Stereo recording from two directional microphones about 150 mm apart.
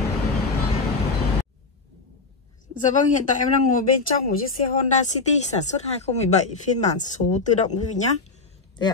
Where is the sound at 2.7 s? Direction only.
55° left (ahead or behind).